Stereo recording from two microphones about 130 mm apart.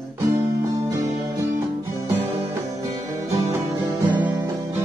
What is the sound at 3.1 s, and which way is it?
Music, 25° right (ahead or behind).